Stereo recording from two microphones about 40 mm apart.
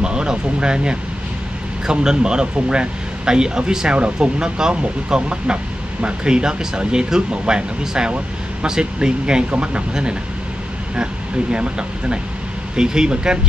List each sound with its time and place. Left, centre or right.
0.0 s speech: right
11.5 s speech: right